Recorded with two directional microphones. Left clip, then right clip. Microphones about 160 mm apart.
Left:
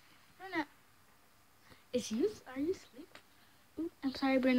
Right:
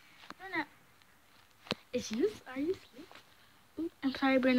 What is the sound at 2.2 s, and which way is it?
Speech, 15° right (ahead or behind).